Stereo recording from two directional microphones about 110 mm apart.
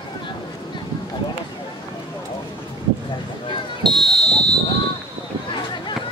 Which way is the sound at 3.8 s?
5° left (ahead or behind).